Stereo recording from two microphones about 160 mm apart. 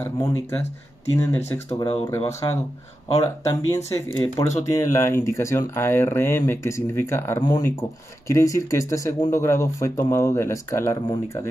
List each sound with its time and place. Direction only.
0.0 s speech: 20° left (ahead or behind)